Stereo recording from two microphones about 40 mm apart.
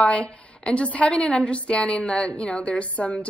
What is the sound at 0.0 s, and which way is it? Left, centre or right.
A woman's voice, left.